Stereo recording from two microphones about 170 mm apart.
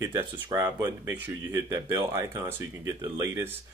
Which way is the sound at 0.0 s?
15° right (ahead or behind).